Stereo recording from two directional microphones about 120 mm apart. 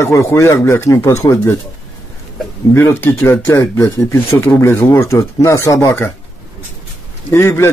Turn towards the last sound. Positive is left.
turn(degrees=20)  # may be behind; listen again after turning